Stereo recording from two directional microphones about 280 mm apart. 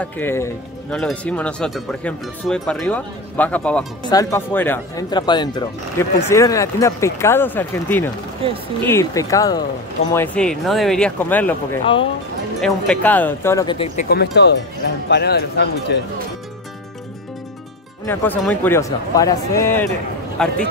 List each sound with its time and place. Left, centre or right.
0.0 s speech: centre
8.4 s speech: centre
8.8 s speech: centre
11.8 s speech: centre
12.5 s speech: centre
14.0 s speech: left
18.0 s speech: centre